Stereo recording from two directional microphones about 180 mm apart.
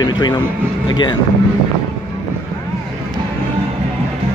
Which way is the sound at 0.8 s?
25° left (ahead or behind).